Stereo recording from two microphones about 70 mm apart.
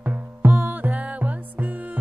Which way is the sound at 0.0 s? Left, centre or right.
Right.